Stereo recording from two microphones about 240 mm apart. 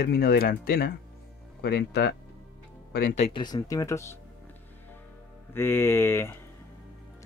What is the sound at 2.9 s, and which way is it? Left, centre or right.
Speech, left.